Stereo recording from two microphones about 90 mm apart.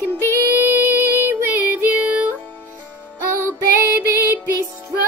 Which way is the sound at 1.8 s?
20° right (ahead or behind).